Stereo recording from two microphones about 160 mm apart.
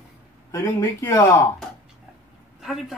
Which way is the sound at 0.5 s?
15° left (ahead or behind).